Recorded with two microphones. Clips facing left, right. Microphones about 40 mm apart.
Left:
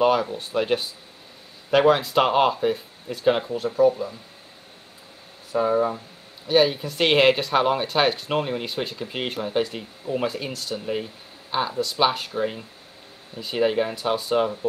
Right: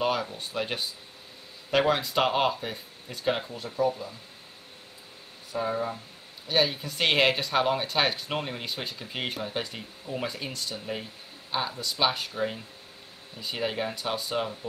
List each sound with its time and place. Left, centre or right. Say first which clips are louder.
0.0 s speech: left 8 dB; centre
3.7 s speech: left 8 dB; centre
5.5 s speech: left 8 dB; centre